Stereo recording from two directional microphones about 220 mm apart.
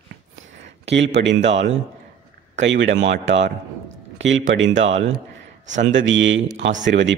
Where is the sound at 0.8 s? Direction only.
55° right (ahead or behind).